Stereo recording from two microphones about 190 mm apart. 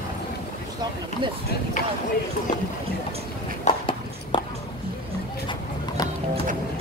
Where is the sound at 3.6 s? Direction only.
25° left (ahead or behind).